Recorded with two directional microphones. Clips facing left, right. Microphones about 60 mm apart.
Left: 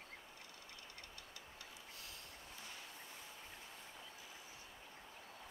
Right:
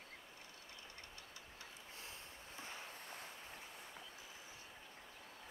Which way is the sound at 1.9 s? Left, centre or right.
Right.